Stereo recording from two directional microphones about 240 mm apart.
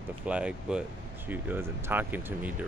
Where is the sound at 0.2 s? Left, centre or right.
Centre.